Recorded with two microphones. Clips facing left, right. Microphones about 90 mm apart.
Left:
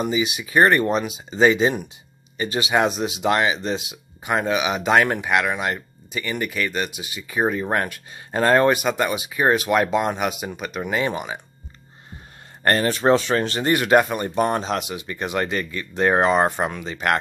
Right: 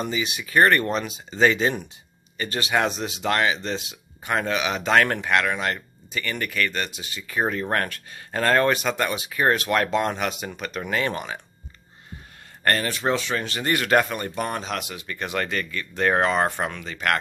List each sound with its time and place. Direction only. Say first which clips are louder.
0.0 s speech: left 5 dB; 15° left (ahead or behind)
12.6 s speech: left 5 dB; 30° left (ahead or behind)
13.7 s speech: left 3 dB; 15° left (ahead or behind)
14.3 s speech: left 6 dB; 30° left (ahead or behind)